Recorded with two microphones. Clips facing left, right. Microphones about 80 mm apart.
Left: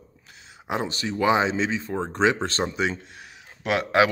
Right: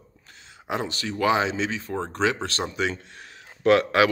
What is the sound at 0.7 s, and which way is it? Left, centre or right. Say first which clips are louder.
Speech: left 1 dB; left.